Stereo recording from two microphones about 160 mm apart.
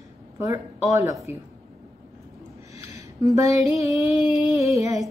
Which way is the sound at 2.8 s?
20° right (ahead or behind).